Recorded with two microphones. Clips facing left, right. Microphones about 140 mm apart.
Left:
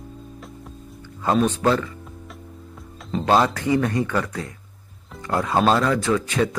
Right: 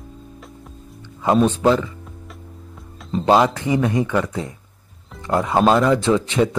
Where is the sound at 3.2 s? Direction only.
15° right (ahead or behind).